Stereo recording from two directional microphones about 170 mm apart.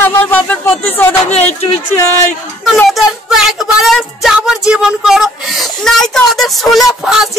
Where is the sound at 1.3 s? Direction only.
40° left (ahead or behind).